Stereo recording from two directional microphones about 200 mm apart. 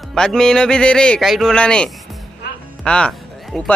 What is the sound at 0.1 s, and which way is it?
Speech, 5° left (ahead or behind).